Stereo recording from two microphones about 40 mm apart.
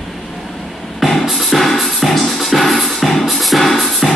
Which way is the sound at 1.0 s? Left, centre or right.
Centre.